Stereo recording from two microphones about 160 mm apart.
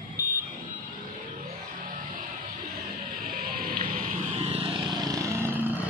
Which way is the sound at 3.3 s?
60° right (ahead or behind).